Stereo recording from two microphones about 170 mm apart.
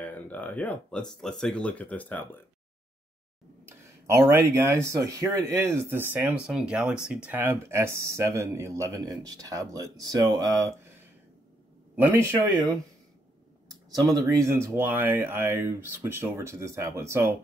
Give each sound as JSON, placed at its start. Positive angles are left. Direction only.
{"t": 0.0, "sound": "speech", "side_deg": 10}
{"t": 3.6, "sound": "speech", "side_deg": -15}
{"t": 11.9, "sound": "speech", "side_deg": -15}
{"t": 13.9, "sound": "speech", "side_deg": -20}